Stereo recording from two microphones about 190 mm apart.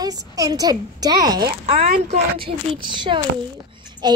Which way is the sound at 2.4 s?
25° right (ahead or behind).